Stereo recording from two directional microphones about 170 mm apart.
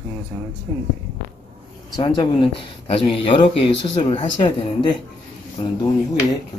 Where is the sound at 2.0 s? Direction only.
25° left (ahead or behind).